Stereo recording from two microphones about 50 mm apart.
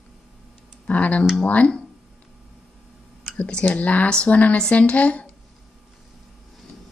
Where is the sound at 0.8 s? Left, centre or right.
Left.